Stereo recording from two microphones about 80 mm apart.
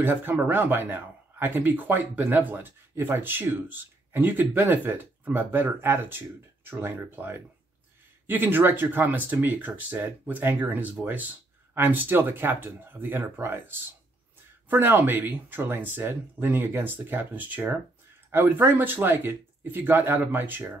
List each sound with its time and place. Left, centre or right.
0.0 s speech: right